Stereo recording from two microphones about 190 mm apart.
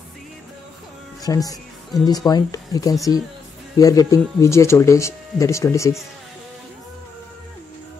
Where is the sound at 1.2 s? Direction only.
20° left (ahead or behind).